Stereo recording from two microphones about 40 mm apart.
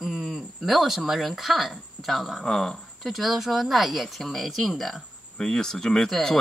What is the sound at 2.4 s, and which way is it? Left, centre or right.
Speech, centre.